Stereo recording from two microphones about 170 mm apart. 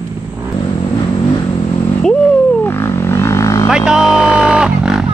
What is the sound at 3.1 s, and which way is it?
Vehicle, 15° left (ahead or behind).